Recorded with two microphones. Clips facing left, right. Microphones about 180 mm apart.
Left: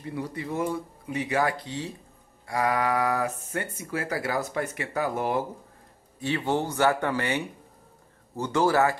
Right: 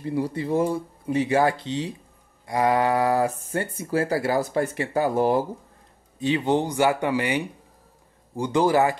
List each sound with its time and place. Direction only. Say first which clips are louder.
0.0 s speech: right 7 dB; 30° right (ahead or behind)
6.1 s speech: right 5 dB; 20° right (ahead or behind)